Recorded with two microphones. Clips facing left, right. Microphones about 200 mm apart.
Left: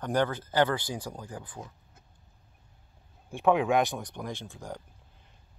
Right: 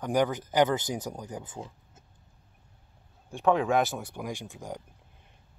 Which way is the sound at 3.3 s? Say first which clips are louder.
Even; centre (ahead or behind).